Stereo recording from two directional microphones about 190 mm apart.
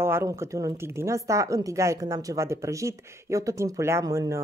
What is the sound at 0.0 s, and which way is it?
A woman's voice, 15° right (ahead or behind).